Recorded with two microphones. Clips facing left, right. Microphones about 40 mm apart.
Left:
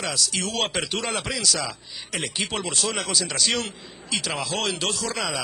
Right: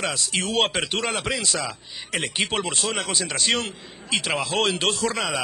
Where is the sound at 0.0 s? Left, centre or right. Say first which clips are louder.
Right 1 dB; right.